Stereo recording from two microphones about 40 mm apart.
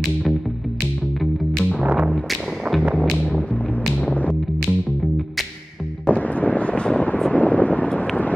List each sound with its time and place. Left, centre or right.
2.8 s music: right
3.2 s music: centre
6.0 s wind noise: left
7.3 s a sound: left